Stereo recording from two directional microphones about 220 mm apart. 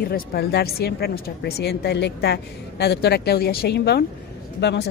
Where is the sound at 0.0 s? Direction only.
45° left (ahead or behind).